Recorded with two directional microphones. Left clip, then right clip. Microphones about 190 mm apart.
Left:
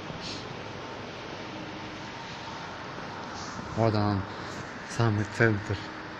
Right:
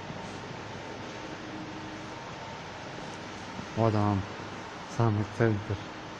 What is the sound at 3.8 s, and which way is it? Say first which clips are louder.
Speech: left 1 dB; 15° right (ahead or behind).